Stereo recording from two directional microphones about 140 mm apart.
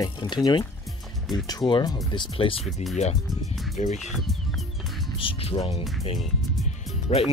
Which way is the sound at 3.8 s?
55° left (ahead or behind).